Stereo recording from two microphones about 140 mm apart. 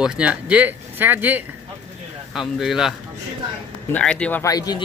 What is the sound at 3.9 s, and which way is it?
Speech, 10° left (ahead or behind).